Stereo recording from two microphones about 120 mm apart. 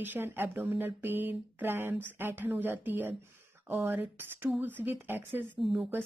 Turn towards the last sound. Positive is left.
turn(degrees=0)  # may be behind; listen again after turning